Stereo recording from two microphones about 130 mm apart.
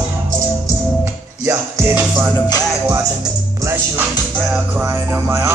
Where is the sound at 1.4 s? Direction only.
20° right (ahead or behind).